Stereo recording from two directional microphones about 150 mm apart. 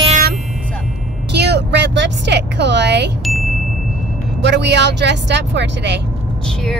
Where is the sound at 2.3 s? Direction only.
90° right.